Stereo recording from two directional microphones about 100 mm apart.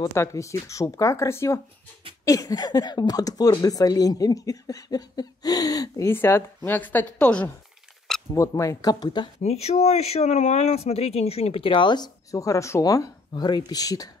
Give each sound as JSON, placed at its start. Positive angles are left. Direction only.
{"t": 0.0, "sound": "speech", "side_deg": 30}
{"t": 8.4, "sound": "speech", "side_deg": 35}
{"t": 9.4, "sound": "speech", "side_deg": 90}
{"t": 12.3, "sound": "speech", "side_deg": 35}
{"t": 13.3, "sound": "speech", "side_deg": 45}